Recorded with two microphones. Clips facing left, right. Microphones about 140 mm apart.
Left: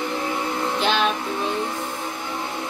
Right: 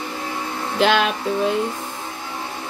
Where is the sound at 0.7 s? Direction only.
90° right.